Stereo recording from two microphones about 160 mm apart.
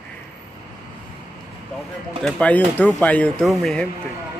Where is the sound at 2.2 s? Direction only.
10° left (ahead or behind).